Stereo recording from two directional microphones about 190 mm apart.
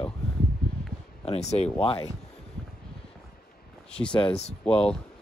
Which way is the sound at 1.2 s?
35° left (ahead or behind).